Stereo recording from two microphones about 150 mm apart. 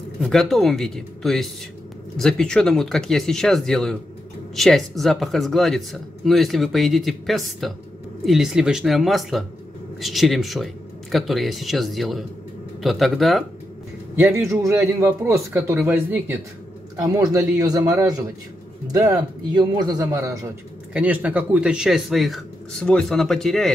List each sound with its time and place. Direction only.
0.2 s a man's voice: centre (ahead or behind)
14.1 s speech: 15° right (ahead or behind)
16.9 s a man's voice: 25° right (ahead or behind)
20.9 s a man's voice: 10° right (ahead or behind)